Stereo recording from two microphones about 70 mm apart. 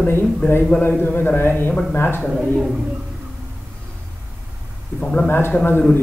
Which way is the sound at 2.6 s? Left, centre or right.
Centre.